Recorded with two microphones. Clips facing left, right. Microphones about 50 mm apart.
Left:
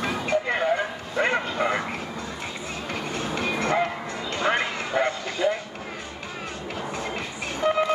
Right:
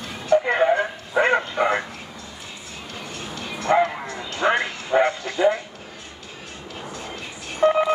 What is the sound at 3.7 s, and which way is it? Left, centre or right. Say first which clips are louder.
Bow-wow: right 5 dB; right.